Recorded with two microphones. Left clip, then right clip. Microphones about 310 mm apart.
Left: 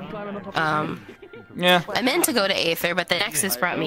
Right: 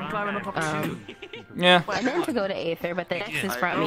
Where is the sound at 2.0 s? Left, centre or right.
Left.